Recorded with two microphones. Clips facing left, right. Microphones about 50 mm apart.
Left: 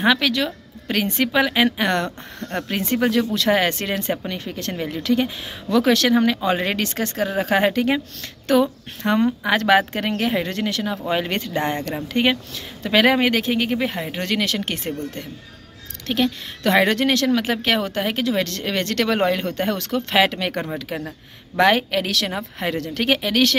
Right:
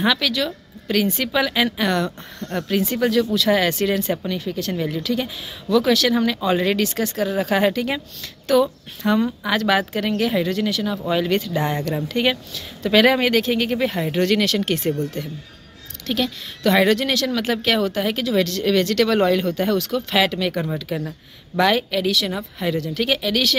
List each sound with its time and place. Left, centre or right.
0.0 s speech: left
4.7 s speech: left
5.0 s speech: left
8.5 s speech: left
9.0 s speech: left
12.1 s speech: left
16.1 s speech: left
20.7 s speech: left
21.5 s speech: left
22.0 s a woman's voice: left
22.6 s speech: left
22.9 s speech: left